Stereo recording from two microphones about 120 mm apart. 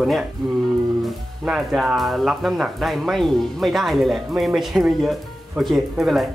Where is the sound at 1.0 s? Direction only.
5° right (ahead or behind).